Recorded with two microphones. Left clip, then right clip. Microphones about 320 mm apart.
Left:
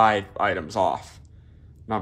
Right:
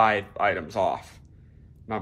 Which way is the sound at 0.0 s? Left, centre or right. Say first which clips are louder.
Left 2 dB; centre.